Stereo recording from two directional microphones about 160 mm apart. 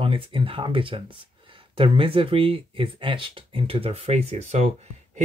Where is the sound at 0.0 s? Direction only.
35° right (ahead or behind).